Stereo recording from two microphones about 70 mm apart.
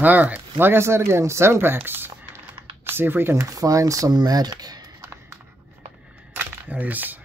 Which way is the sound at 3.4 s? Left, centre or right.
Right.